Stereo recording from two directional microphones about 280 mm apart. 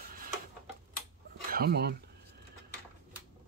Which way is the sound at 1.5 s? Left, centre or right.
Right.